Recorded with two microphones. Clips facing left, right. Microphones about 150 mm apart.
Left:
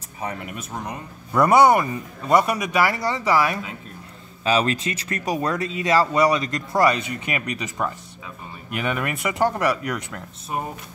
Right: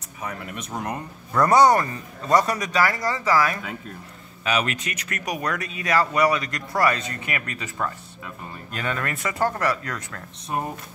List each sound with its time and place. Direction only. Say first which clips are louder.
0.6 s speech: right 2 dB; centre (ahead or behind)
1.3 s speech: left 1 dB; 10° left (ahead or behind)
2.8 s speech: even; 20° left (ahead or behind)